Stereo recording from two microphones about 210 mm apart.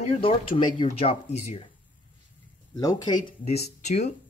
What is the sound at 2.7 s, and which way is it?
Speech, 20° left (ahead or behind).